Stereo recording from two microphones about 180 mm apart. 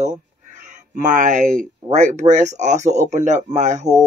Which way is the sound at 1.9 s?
40° right (ahead or behind).